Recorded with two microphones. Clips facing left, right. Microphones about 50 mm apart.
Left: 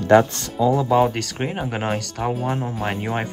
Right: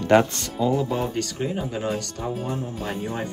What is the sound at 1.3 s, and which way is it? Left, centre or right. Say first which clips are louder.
Speech: left 2 dB; left.